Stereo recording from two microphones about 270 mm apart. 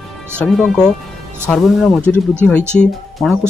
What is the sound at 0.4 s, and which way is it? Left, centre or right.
Speech, centre.